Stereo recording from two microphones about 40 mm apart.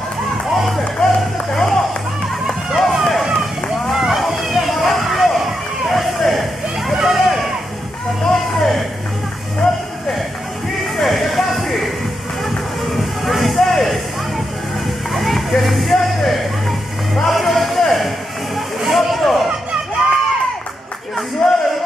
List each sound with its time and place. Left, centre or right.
0.5 s music: centre
0.9 s run: centre
6.9 s vehicle: centre
8.2 s music: centre
11.0 s music: centre
15.1 s a sound: centre
17.1 s music: centre
18.8 s a sound: centre
21.4 s a sound: left